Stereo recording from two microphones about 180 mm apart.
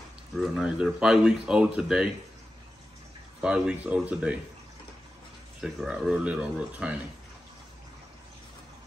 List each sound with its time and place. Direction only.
0.4 s speech: 5° right (ahead or behind)
3.3 s speech: 5° right (ahead or behind)
5.6 s speech: 5° right (ahead or behind)